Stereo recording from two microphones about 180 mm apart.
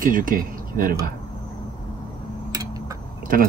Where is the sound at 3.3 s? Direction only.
55° right (ahead or behind).